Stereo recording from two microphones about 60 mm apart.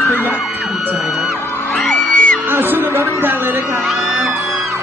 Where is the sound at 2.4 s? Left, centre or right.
Right.